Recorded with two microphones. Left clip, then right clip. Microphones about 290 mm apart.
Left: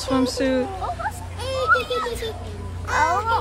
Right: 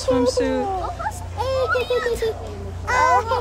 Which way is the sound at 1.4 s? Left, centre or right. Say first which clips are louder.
Left 1 dB; centre.